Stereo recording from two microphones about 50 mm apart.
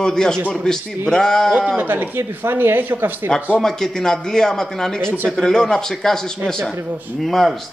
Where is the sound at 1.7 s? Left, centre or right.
Right.